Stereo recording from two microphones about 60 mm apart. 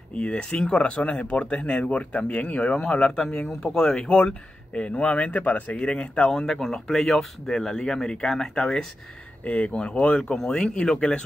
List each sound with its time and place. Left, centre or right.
0.1 s speech: centre
9.4 s speech: left
10.3 s speech: centre